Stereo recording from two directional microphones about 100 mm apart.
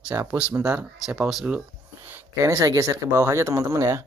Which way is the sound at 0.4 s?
15° right (ahead or behind).